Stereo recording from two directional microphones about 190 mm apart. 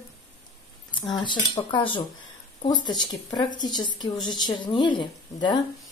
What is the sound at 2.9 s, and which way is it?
Speech, 5° left (ahead or behind).